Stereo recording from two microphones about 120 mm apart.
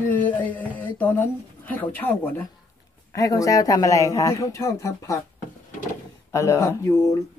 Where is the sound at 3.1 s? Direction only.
30° left (ahead or behind).